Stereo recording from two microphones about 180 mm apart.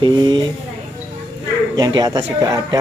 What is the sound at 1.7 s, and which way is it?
Speech, 20° right (ahead or behind).